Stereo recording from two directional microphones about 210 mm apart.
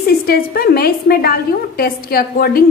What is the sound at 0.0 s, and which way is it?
A woman's voice, 45° left (ahead or behind).